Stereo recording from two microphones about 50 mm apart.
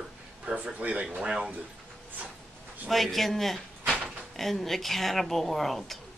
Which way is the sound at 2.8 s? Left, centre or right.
Centre.